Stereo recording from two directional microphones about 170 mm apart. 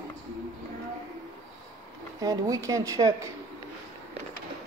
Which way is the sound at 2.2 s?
20° right (ahead or behind).